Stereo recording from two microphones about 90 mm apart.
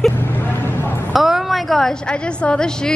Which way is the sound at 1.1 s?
5° right (ahead or behind).